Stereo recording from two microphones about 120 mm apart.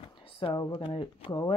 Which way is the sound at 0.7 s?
45° left (ahead or behind).